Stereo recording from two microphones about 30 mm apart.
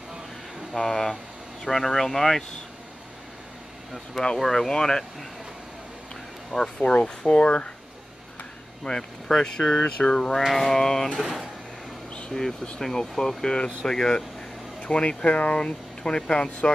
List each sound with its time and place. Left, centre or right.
0.7 s speech: centre
4.1 s speech: left
4.4 s speech: centre
4.6 s speech: left
6.8 s speech: left
8.8 s speech: left
10.1 s speech: centre
10.8 s speech: centre
12.3 s speech: centre
14.8 s speech: left
16.0 s speech: left